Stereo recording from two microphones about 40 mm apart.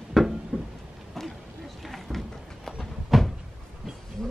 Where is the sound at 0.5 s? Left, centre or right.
Right.